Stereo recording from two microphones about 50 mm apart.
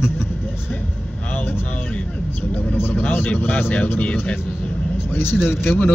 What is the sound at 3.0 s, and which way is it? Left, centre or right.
Speech, left.